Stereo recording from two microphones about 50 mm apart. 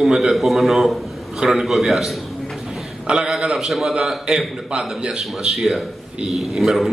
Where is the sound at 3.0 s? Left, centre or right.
Centre.